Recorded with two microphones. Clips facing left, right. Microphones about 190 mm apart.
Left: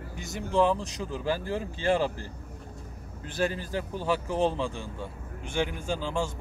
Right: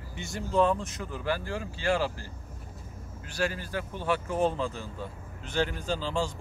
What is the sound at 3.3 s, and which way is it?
Speech, 20° left (ahead or behind).